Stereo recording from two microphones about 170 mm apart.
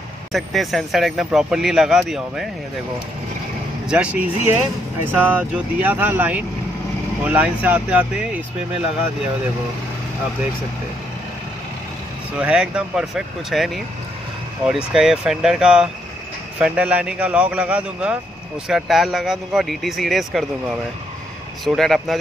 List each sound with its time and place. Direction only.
0.3 s speech: centre (ahead or behind)
3.9 s a man's voice: 5° right (ahead or behind)
12.4 s speech: 5° right (ahead or behind)
14.9 s a man's voice: 5° right (ahead or behind)